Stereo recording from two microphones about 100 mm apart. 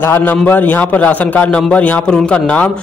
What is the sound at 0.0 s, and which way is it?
A man's voice, 20° left (ahead or behind).